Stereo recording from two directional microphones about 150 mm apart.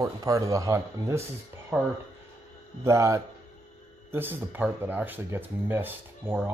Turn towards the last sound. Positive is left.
turn(degrees=-15)  # may be behind; listen again after turning